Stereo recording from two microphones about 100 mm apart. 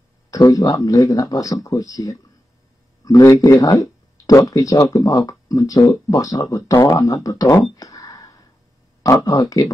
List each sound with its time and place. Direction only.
0.5 s speech: 35° left (ahead or behind)
7.7 s a sound: 35° left (ahead or behind)
9.0 s speech: 35° left (ahead or behind)